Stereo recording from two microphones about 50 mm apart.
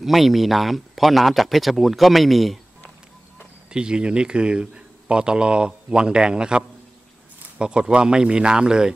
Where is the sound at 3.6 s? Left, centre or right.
Centre.